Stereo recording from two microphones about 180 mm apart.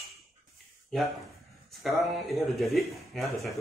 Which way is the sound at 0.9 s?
Centre (ahead or behind).